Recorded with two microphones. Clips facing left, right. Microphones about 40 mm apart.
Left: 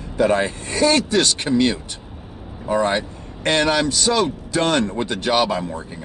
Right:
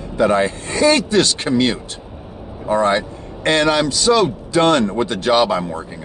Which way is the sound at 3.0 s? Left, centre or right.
Right.